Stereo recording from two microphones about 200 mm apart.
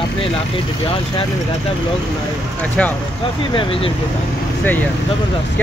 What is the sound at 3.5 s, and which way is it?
Speech, 25° left (ahead or behind).